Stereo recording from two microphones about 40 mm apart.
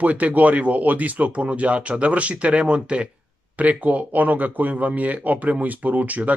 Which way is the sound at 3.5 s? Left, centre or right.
Right.